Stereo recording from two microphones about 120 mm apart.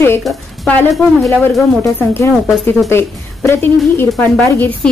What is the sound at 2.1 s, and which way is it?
A woman's voice, 20° left (ahead or behind).